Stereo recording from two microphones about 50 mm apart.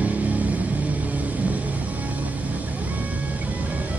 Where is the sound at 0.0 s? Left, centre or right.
Right.